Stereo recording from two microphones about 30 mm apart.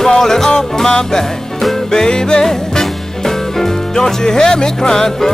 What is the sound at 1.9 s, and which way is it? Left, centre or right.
Music, left.